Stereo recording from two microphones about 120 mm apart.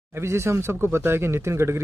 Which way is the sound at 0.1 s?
20° right (ahead or behind).